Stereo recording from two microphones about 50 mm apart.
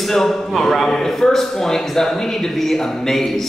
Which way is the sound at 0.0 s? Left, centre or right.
Centre.